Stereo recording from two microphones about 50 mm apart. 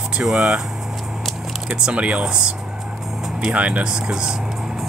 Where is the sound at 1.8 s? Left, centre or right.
Right.